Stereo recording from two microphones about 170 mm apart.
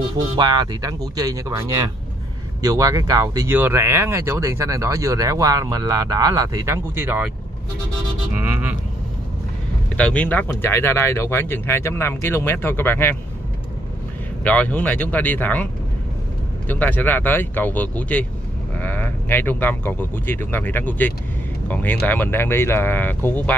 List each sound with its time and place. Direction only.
0.4 s speech: 25° right (ahead or behind)
8.4 s music: 10° right (ahead or behind)
9.9 s speech: 5° left (ahead or behind)
14.4 s speech: 10° left (ahead or behind)